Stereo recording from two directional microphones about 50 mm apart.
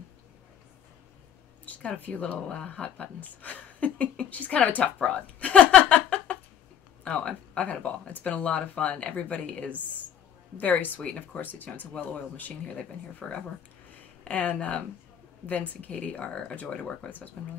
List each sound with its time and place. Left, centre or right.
1.7 s speech: left
5.8 s a sound: left
7.1 s speech: left
14.2 s speech: left
17.4 s speech: left